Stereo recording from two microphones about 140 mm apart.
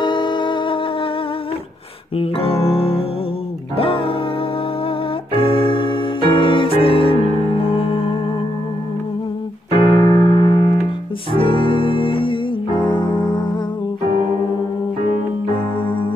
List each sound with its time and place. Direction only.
0.0 s music: 35° left (ahead or behind)
2.1 s music: 45° left (ahead or behind)
5.3 s music: 40° left (ahead or behind)
9.8 s keyboard: 30° left (ahead or behind)
11.3 s music: 40° left (ahead or behind)
15.4 s music: 40° left (ahead or behind)